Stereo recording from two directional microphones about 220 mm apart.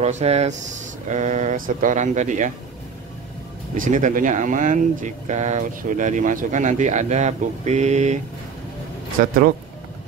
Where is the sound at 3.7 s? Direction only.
35° right (ahead or behind).